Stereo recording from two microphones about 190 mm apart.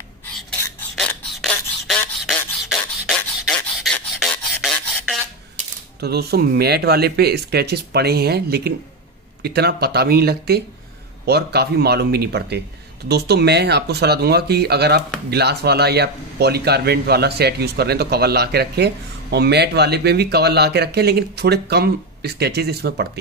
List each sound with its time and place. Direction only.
0.5 s filing: 10° left (ahead or behind)
0.9 s beatboxing: 5° left (ahead or behind)
3.5 s filing: centre (ahead or behind)
5.9 s a man's voice: 60° right (ahead or behind)